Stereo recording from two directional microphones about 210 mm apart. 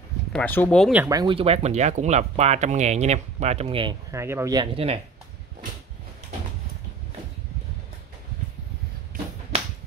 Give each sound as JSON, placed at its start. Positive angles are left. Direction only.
{"t": 0.3, "sound": "speech", "side_deg": 5}
{"t": 1.0, "sound": "speech", "side_deg": -20}
{"t": 4.1, "sound": "speech", "side_deg": -15}